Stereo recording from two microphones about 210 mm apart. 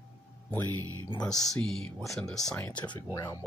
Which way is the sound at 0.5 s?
10° left (ahead or behind).